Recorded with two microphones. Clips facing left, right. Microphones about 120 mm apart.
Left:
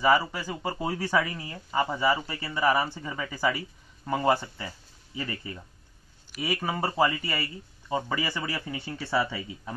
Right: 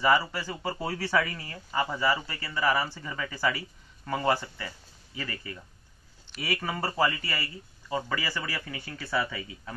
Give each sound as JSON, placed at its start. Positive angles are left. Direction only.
{"t": 0.0, "sound": "speech", "side_deg": 10}